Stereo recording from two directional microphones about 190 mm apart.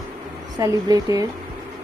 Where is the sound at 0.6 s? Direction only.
20° right (ahead or behind).